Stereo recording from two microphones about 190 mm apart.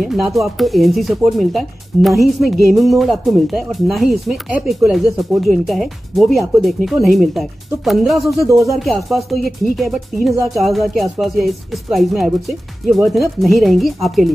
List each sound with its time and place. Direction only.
0.0 s speech: centre (ahead or behind)